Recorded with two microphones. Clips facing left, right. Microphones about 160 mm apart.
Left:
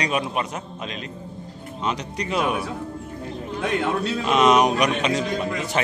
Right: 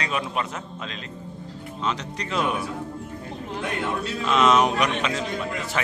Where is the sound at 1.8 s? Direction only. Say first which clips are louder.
Left 2 dB; 15° left (ahead or behind).